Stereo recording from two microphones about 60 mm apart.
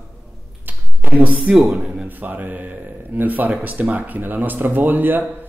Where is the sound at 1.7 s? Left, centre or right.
Centre.